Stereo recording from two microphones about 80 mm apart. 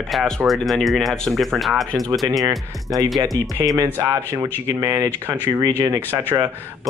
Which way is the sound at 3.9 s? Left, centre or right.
Right.